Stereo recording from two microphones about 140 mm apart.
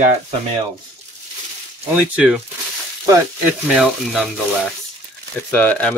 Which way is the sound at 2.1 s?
5° right (ahead or behind).